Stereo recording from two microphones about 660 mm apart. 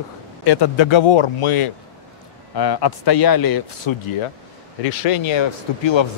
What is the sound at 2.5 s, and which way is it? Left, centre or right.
Speech, left.